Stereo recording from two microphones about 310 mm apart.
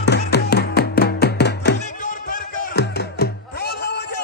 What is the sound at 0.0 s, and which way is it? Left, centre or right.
Music, left.